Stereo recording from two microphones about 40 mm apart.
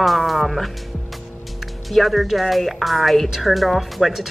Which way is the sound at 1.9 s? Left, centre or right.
Centre.